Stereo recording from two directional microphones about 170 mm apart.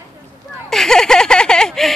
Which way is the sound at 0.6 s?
5° left (ahead or behind).